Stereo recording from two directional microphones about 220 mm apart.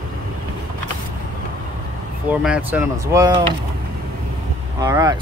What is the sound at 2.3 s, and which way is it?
Speech, 5° right (ahead or behind).